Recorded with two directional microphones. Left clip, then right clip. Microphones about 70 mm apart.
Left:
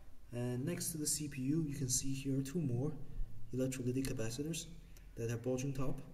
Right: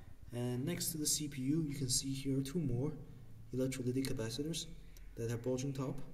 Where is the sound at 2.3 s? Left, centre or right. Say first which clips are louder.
Even; left.